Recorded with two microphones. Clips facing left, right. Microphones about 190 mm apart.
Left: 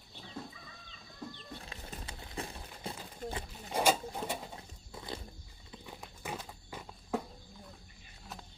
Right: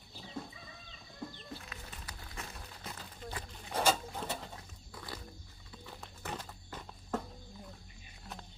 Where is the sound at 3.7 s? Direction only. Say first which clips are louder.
Left 2 dB; 10° left (ahead or behind).